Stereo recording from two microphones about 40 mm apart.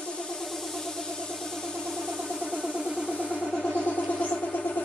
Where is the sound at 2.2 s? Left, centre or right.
Centre.